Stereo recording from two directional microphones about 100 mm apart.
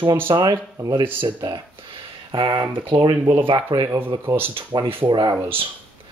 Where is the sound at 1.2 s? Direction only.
55° right (ahead or behind).